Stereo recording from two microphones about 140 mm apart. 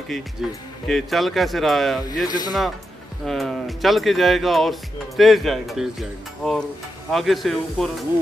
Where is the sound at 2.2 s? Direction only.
30° left (ahead or behind).